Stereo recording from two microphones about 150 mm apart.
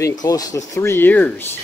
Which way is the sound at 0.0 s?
25° left (ahead or behind).